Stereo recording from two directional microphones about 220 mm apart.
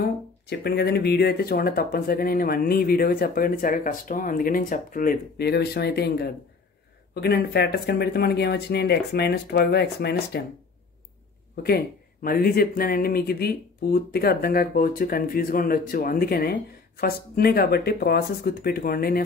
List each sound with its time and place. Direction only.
0.5 s speech: 45° left (ahead or behind)
11.6 s speech: 45° left (ahead or behind)